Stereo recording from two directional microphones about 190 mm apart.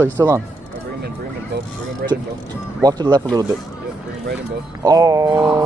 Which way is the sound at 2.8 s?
20° right (ahead or behind).